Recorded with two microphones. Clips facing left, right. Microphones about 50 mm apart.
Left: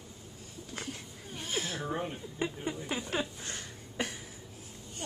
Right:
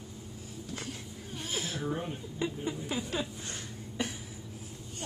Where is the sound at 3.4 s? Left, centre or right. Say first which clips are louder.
Right 1 dB; left.